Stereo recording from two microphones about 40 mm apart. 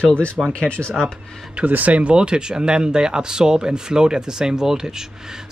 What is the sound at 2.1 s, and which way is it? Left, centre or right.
Speech, right.